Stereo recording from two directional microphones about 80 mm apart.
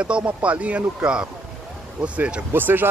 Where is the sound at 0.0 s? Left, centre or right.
Centre.